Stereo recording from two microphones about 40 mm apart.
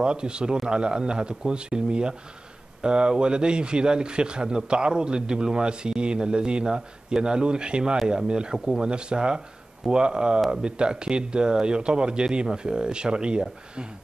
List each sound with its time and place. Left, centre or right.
0.0 s a man's voice: right